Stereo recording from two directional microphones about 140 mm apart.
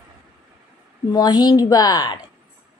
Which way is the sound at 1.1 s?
30° left (ahead or behind).